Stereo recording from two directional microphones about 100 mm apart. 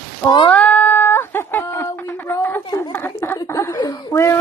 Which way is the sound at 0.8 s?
20° left (ahead or behind).